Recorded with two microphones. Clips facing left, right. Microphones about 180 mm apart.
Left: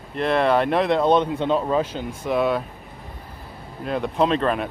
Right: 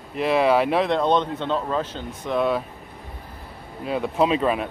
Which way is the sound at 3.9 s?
5° right (ahead or behind).